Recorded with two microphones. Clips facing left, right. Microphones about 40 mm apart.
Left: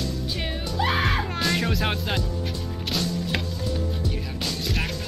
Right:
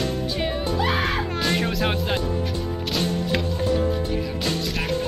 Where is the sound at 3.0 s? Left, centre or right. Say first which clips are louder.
Right 3 dB; right.